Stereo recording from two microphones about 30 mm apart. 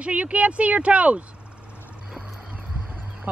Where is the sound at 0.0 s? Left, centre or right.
Right.